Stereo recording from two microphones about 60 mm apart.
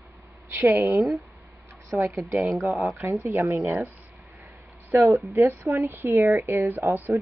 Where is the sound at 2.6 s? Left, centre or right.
Centre.